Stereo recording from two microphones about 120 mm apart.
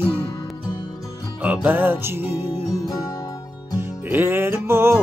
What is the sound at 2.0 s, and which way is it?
Music, 20° right (ahead or behind).